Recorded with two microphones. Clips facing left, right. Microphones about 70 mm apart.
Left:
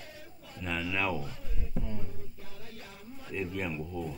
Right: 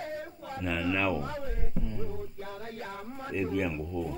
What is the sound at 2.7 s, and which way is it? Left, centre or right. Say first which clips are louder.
Music: right 8 dB; right.